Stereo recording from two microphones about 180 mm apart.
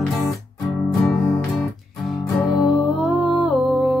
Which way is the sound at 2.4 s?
5° left (ahead or behind).